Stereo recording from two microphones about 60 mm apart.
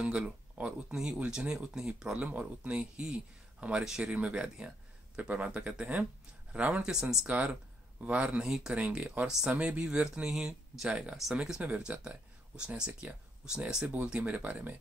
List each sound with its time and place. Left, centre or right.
0.0 s speech: centre
2.1 s speech: right
6.8 s speech: centre
7.2 s speech: right
8.5 s speech: centre
8.8 s speech: right
11.9 s speech: right
12.5 s speech: centre